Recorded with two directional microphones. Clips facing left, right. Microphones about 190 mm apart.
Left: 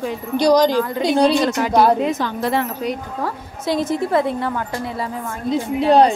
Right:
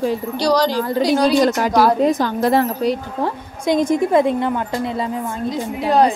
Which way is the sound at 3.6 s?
15° right (ahead or behind).